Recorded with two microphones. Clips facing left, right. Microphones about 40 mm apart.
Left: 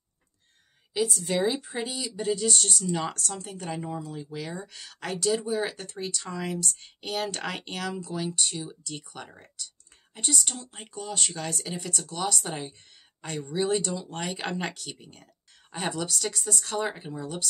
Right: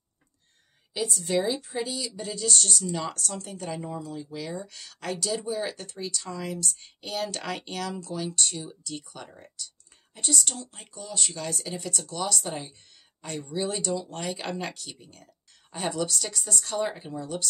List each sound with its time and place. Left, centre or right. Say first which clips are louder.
1.2 s speech: even; centre
3.3 s speech: even; centre
5.9 s speech: left 1 dB; left
6.6 s speech: left 1 dB; centre; by 11.3 s left
11.5 s speech: even; centre